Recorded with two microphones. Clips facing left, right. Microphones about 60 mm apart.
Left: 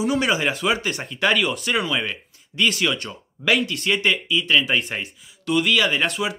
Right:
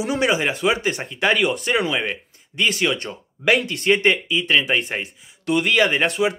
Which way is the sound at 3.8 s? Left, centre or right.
Right.